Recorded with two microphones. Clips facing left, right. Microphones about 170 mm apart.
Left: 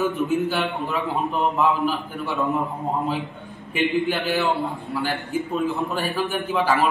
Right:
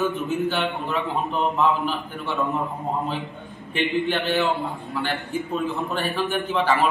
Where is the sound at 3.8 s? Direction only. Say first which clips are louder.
Left 1 dB; 5° left (ahead or behind).